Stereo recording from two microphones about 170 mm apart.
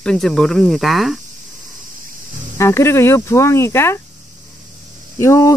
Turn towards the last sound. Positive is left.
turn(degrees=15)  # may be behind; listen again after turning